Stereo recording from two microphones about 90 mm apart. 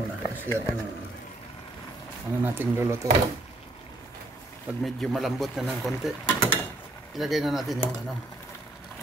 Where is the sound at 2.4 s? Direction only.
25° right (ahead or behind).